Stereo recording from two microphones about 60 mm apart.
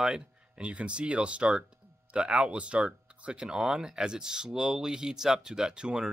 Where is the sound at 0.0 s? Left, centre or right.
Centre.